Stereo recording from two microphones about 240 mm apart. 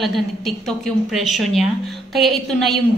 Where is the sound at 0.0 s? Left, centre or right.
Centre.